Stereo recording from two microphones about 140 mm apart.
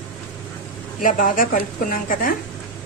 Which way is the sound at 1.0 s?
75° left (ahead or behind).